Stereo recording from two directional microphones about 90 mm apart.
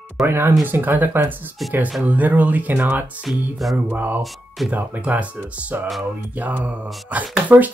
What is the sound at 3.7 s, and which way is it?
Speech, 20° right (ahead or behind).